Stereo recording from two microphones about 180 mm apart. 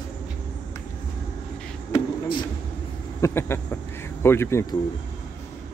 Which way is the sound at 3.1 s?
15° left (ahead or behind).